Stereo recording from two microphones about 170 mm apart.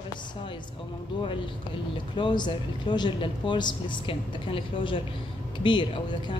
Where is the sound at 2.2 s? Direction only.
25° left (ahead or behind).